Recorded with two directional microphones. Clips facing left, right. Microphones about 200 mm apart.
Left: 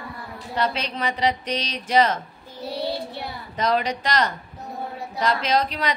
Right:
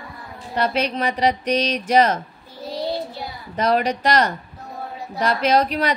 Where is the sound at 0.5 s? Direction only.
45° right (ahead or behind).